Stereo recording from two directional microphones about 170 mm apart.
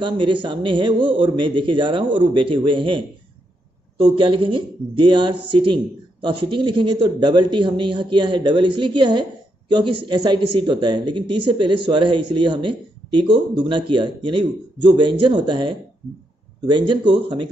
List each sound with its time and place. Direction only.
0.0 s speech: 30° right (ahead or behind)
4.1 s speech: 30° right (ahead or behind)